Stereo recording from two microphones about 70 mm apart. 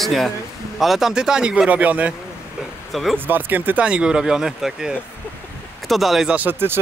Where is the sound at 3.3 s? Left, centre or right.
Right.